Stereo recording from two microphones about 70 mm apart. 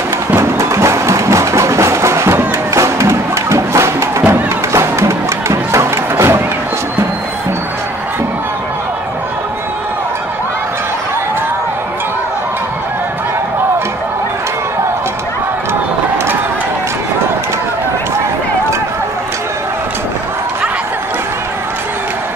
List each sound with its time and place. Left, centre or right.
0.4 s music: right